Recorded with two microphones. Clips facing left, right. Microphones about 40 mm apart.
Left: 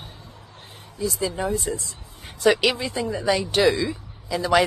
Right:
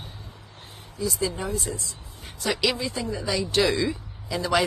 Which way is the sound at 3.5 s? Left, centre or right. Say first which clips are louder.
Even; centre.